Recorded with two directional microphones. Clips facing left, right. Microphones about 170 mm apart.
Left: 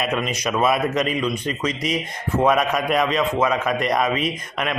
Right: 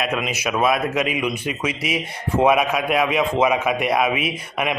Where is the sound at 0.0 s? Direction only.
Centre (ahead or behind).